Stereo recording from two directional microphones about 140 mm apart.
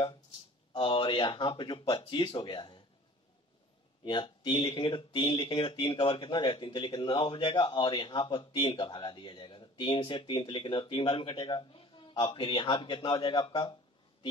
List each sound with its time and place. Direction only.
0.7 s speech: 40° left (ahead or behind)
4.0 s speech: 35° left (ahead or behind)